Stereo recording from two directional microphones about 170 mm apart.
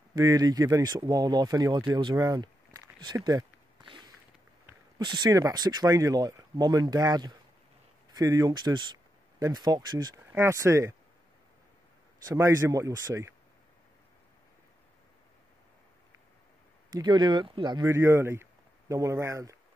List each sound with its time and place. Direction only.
0.1 s speech: 20° right (ahead or behind)
3.3 s a sound: 25° right (ahead or behind)
4.9 s speech: 25° right (ahead or behind)
12.3 s speech: 20° right (ahead or behind)
16.9 s speech: 25° right (ahead or behind)